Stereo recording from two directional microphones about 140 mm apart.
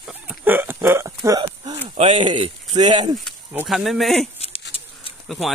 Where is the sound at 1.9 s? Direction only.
50° right (ahead or behind).